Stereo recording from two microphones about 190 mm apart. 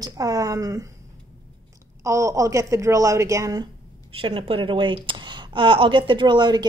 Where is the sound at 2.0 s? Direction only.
15° right (ahead or behind).